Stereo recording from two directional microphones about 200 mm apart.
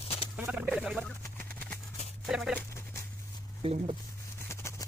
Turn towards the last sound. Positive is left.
turn(degrees=15)  # may be behind; listen again after turning